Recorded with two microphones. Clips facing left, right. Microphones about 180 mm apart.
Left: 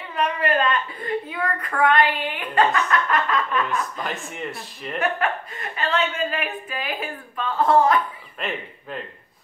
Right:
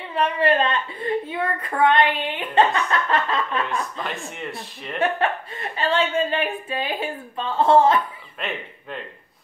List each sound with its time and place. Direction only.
0.1 s a woman's voice: 30° right (ahead or behind)
4.0 s speech: centre (ahead or behind)
4.9 s a woman's voice: 30° right (ahead or behind)
8.4 s speech: centre (ahead or behind)